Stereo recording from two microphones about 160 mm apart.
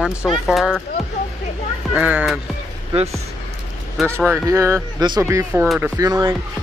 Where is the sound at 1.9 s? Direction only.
5° right (ahead or behind).